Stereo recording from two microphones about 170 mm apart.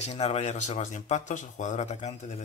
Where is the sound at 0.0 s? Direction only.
40° left (ahead or behind).